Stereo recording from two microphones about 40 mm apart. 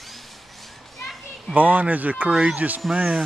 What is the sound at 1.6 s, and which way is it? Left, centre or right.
Speech, right.